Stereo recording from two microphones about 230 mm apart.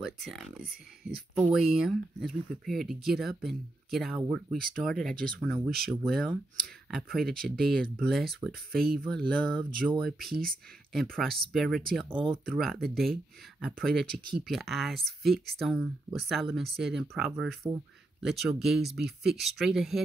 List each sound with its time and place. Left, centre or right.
0.0 s speech: centre
12.1 s speech: right
12.4 s speech: centre